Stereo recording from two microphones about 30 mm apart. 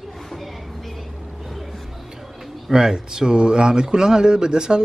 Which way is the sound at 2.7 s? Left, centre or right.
Right.